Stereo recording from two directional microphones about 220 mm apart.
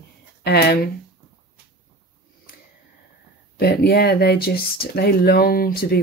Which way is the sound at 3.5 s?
45° left (ahead or behind).